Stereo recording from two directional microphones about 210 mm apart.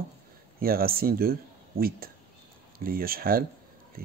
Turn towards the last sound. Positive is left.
turn(degrees=-45)  # may be behind; listen again after turning